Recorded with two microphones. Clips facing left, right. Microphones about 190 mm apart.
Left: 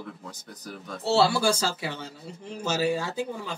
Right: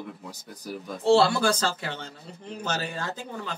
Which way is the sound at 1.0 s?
5° left (ahead or behind).